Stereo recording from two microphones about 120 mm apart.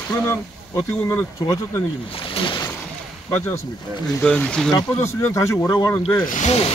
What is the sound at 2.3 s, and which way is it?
Speech, 45° left (ahead or behind).